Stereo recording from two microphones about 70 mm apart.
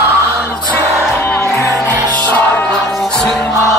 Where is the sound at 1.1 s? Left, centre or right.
Left.